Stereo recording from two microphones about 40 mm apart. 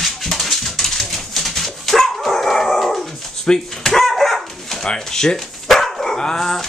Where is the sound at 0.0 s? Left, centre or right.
Centre.